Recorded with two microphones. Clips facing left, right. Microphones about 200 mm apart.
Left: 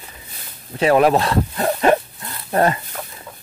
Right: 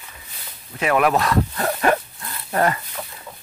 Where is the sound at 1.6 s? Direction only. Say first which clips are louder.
Left 7 dB; 20° left (ahead or behind).